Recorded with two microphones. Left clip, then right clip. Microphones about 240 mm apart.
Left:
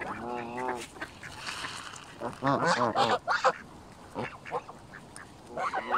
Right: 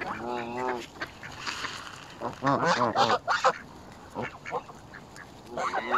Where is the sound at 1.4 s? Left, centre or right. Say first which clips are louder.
Right 3 dB; centre.